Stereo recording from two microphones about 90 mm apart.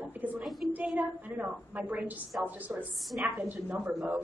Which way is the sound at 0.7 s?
15° right (ahead or behind).